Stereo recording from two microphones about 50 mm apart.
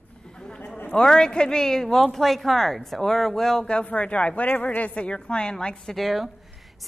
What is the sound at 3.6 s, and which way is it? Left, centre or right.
A woman's voice, left.